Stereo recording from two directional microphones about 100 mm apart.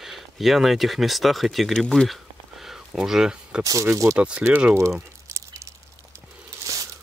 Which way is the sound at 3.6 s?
35° right (ahead or behind).